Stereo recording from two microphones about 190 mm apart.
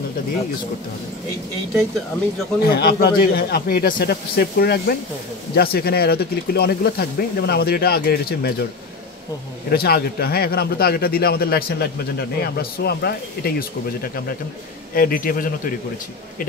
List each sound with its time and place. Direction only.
2.6 s speech: 55° left (ahead or behind)
9.7 s a man's voice: 55° left (ahead or behind)